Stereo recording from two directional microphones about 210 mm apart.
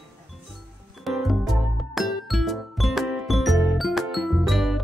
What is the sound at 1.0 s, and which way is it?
Music, centre (ahead or behind).